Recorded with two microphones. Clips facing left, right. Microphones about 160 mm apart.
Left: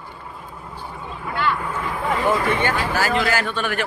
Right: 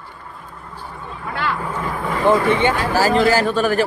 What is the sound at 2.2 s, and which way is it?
Speech, 20° right (ahead or behind).